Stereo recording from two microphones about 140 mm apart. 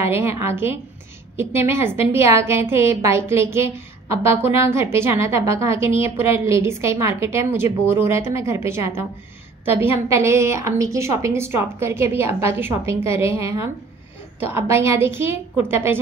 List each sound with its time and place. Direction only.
0.0 s a woman's voice: 20° right (ahead or behind)